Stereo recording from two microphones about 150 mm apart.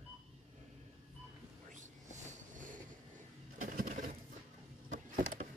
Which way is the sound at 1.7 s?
55° right (ahead or behind).